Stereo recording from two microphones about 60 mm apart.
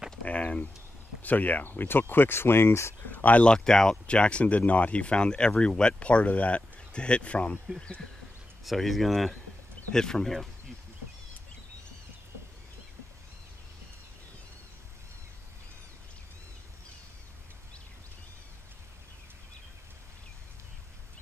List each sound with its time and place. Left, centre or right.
0.1 s a sound: left
1.2 s speech: left
3.1 s speech: left
3.4 s speech: centre
8.6 s speech: centre